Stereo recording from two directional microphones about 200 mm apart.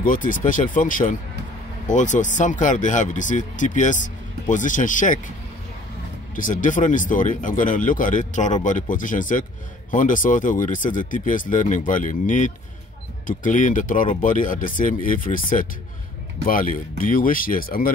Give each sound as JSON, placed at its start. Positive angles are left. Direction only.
{"t": 0.0, "sound": "speech", "side_deg": 40}
{"t": 6.3, "sound": "speech", "side_deg": 40}